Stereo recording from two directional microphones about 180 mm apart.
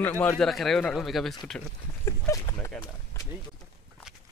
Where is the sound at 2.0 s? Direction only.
15° left (ahead or behind).